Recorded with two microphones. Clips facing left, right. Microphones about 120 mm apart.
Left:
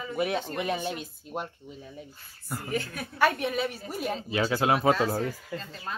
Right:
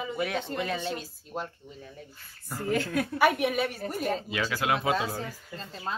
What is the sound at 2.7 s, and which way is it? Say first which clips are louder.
Speech: right 6 dB; 90° right.